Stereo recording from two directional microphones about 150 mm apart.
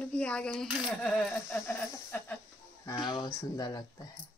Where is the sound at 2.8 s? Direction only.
30° left (ahead or behind).